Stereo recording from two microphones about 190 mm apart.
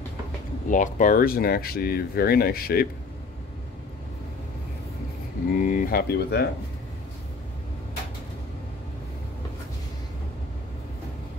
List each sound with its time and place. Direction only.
0.7 s speech: 45° left (ahead or behind)
5.6 s speech: 45° left (ahead or behind)